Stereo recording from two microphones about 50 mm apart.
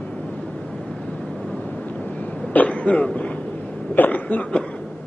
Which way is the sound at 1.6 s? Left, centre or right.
Left.